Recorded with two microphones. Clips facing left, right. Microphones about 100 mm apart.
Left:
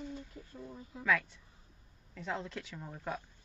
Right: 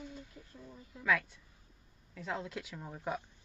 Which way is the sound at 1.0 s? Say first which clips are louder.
Even; centre (ahead or behind).